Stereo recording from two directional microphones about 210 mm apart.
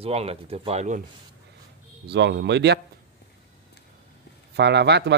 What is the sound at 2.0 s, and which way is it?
Speech, 55° right (ahead or behind).